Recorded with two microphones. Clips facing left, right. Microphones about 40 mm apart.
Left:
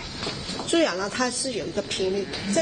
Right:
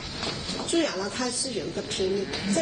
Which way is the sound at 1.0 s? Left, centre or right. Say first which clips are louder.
Left 4 dB; left.